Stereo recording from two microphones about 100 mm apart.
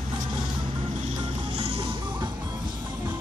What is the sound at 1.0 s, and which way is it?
Music, 75° right (ahead or behind).